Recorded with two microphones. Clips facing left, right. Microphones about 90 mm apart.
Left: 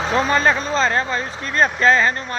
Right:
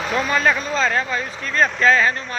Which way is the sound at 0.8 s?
25° left (ahead or behind).